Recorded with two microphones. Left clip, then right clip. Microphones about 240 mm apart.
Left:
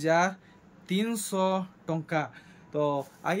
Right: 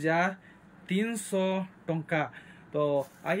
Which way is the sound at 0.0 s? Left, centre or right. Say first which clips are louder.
Left 2 dB; centre.